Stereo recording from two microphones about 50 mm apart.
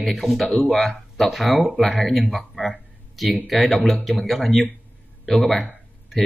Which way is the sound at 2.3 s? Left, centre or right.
Centre.